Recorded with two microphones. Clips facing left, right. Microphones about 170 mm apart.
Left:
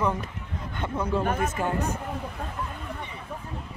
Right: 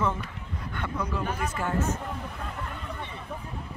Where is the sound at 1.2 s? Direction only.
50° left (ahead or behind).